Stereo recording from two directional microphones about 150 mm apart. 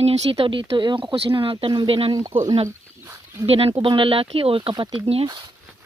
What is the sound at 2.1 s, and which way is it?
Speech, 25° right (ahead or behind).